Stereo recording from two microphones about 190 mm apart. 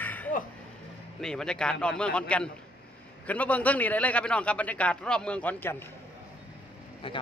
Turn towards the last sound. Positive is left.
turn(degrees=30)  # may be behind; listen again after turning